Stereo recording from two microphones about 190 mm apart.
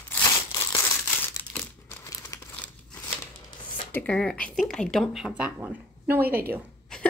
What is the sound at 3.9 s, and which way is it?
Speech, 5° left (ahead or behind).